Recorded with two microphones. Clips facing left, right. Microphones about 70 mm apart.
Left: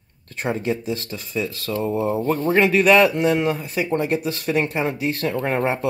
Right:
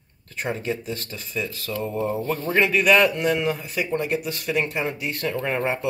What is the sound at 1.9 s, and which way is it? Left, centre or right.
Speech, centre.